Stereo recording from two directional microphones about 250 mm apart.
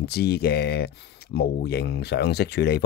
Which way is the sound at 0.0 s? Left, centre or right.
Left.